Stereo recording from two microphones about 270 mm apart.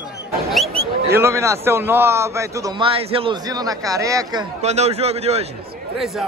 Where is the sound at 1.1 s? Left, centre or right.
Centre.